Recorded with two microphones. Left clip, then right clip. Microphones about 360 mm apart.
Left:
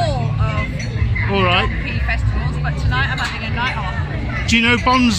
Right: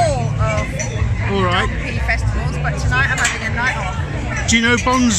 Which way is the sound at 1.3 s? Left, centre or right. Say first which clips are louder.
Left 1 dB; centre.